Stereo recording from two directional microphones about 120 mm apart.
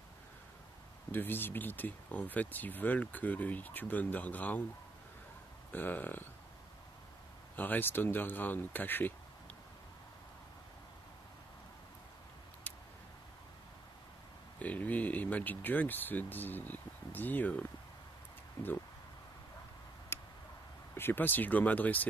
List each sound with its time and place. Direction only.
1.1 s speech: 15° left (ahead or behind)
5.7 s speech: 15° left (ahead or behind)
7.5 s speech: 15° left (ahead or behind)
14.6 s speech: 15° left (ahead or behind)
20.1 s tick: 20° left (ahead or behind)
20.9 s speech: 15° left (ahead or behind)